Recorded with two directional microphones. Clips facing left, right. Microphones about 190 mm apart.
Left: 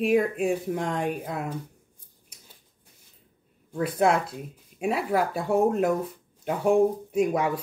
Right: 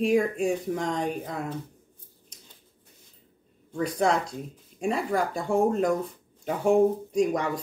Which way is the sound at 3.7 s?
5° left (ahead or behind).